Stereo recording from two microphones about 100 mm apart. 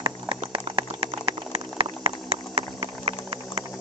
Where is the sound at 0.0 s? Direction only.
60° right (ahead or behind).